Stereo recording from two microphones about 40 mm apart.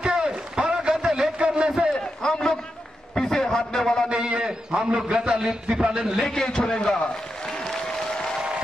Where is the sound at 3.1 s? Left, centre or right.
Centre.